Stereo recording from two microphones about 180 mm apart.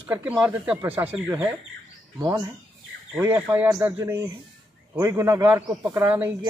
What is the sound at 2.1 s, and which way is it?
Speech, 20° right (ahead or behind).